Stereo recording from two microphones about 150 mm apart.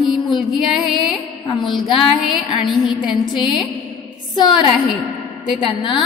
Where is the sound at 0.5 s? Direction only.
Centre (ahead or behind).